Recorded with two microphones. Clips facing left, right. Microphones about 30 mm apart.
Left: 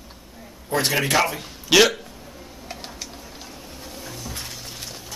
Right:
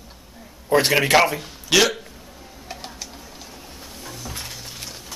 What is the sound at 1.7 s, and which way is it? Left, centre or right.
Speech, centre.